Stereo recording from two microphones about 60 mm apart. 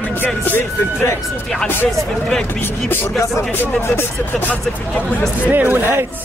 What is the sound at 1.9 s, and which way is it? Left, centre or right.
Speech, centre.